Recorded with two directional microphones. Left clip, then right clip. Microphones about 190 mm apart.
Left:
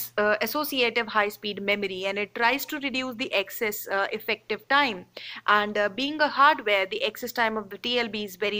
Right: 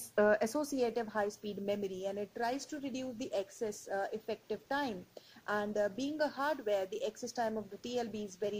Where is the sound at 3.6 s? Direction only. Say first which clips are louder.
Left 11 dB; 30° left (ahead or behind).